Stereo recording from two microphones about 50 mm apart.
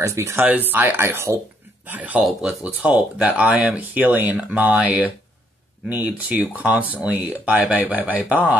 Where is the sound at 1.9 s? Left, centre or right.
Right.